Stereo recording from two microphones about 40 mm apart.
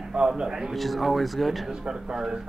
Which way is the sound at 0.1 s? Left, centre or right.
Centre.